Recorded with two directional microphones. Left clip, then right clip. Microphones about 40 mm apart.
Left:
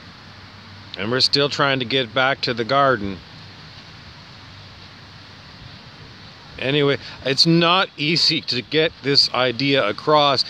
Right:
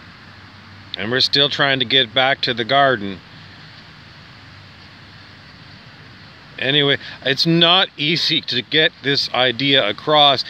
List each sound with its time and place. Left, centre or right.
0.9 s speech: left
6.5 s speech: left
7.3 s speech: left
7.6 s speech: left
9.3 s speech: left